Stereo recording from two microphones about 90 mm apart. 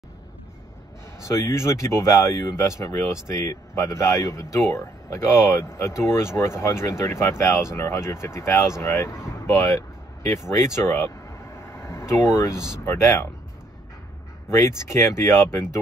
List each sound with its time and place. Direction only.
1.2 s speech: 35° left (ahead or behind)
10.6 s vehicle: 25° left (ahead or behind)
12.8 s speech: 30° left (ahead or behind)
14.5 s speech: 35° left (ahead or behind)